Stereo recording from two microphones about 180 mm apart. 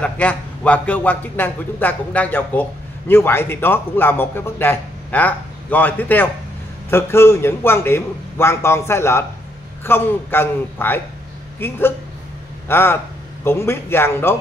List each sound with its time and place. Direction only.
0.0 s a man's voice: 5° left (ahead or behind)
12.6 s a man's voice: 15° left (ahead or behind)